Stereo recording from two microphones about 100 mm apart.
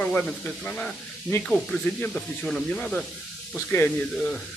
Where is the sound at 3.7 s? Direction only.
25° left (ahead or behind).